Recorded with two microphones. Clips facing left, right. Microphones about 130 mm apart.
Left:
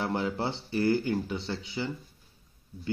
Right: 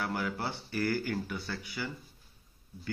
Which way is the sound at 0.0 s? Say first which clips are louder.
Left 4 dB; 25° left (ahead or behind).